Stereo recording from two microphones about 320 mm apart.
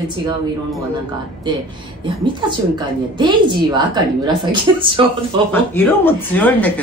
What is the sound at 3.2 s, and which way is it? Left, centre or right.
A woman's voice, centre.